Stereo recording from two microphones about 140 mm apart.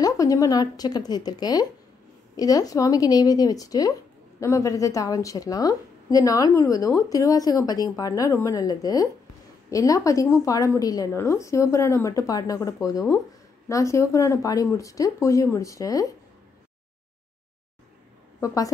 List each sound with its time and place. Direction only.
0.0 s a woman's voice: 25° left (ahead or behind)
18.4 s a woman's voice: 25° left (ahead or behind)